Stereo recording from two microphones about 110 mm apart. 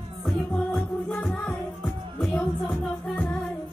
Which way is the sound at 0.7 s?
10° left (ahead or behind).